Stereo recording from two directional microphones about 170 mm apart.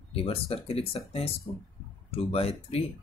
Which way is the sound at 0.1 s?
35° left (ahead or behind).